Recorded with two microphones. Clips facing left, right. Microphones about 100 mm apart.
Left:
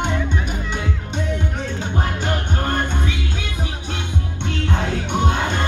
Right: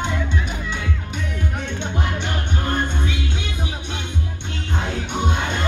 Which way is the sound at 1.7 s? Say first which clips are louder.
Left 1 dB; 40° left (ahead or behind).